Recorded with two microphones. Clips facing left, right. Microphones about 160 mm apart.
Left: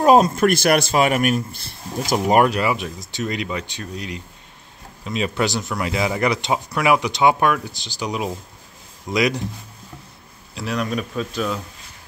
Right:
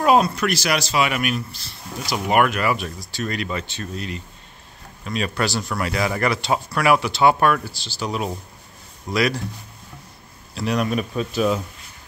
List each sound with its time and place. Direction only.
0.0 s a man's voice: 40° left (ahead or behind)
2.7 s speech: 20° left (ahead or behind)
10.6 s speech: 5° right (ahead or behind)